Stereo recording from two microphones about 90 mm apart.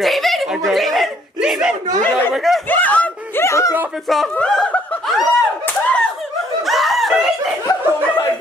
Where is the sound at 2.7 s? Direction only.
15° left (ahead or behind).